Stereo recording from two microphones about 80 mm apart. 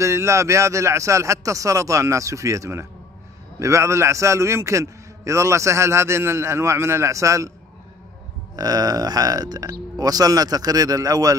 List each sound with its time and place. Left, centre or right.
0.0 s a man's voice: right
8.5 s speech: right